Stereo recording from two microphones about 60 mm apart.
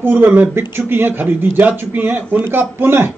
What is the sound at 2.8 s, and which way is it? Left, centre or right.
Speech, right.